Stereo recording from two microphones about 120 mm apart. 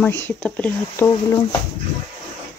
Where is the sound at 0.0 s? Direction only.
10° left (ahead or behind).